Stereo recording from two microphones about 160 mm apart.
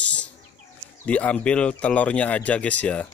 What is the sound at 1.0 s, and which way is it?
Speech, 5° left (ahead or behind).